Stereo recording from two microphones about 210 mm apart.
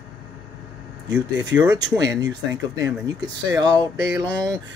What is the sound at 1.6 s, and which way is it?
Speech, 20° right (ahead or behind).